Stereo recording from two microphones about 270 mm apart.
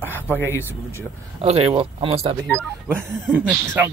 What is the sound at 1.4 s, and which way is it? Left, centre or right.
Speech, right.